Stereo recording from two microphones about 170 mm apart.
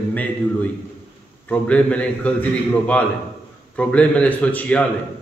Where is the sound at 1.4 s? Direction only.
5° left (ahead or behind).